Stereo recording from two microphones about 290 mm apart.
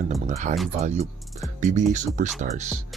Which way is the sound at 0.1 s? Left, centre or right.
Right.